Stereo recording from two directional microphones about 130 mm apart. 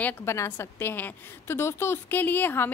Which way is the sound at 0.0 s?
20° left (ahead or behind).